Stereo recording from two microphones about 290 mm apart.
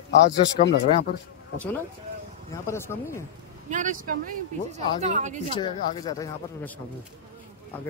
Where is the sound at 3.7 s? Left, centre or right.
Right.